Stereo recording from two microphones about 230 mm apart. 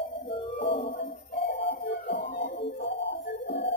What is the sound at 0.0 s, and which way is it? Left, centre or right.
Music, left.